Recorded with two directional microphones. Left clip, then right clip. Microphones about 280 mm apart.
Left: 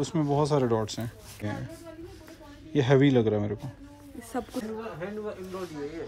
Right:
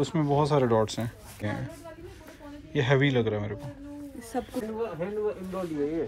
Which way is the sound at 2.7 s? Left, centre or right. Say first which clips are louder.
Left 2 dB; centre.